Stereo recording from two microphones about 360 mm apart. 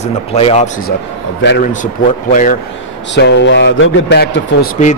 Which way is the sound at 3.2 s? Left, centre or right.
Left.